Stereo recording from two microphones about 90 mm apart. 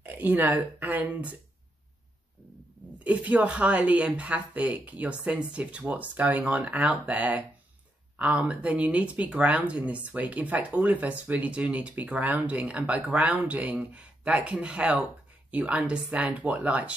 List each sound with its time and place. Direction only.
0.0 s speech: 20° right (ahead or behind)
3.0 s speech: 15° right (ahead or behind)